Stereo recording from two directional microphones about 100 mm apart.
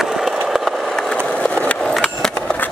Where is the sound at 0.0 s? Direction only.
5° right (ahead or behind).